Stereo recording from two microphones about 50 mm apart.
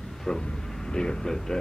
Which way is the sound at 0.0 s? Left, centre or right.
Centre.